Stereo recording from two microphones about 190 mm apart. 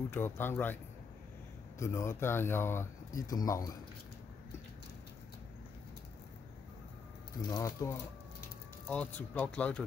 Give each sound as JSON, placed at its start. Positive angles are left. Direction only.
{"t": 0.1, "sound": "speech", "side_deg": 10}
{"t": 1.8, "sound": "speech", "side_deg": 15}
{"t": 7.4, "sound": "speech", "side_deg": 15}